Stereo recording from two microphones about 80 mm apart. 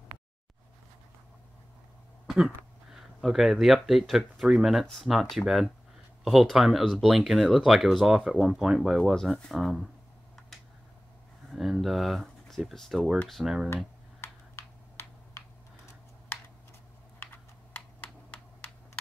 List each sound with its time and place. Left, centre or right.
2.2 s speech: centre
10.5 s a sound: centre
11.5 s speech: centre
14.2 s computer keyboard: left
17.2 s computer keyboard: left